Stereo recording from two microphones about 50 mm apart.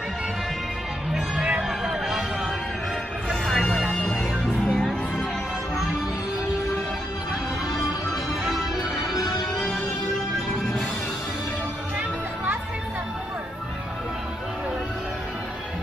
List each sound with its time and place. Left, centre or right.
1.3 s music: centre
3.3 s music: centre
4.6 s music: centre